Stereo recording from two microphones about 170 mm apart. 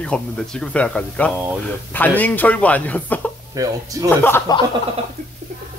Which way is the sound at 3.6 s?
20° right (ahead or behind).